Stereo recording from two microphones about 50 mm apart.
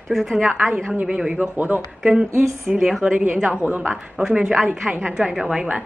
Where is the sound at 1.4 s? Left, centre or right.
Right.